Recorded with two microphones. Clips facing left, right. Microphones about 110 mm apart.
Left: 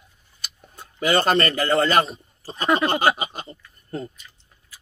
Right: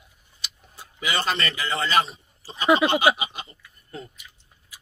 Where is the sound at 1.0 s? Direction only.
45° left (ahead or behind).